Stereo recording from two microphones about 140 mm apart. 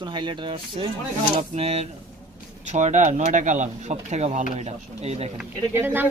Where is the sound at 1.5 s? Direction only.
50° right (ahead or behind).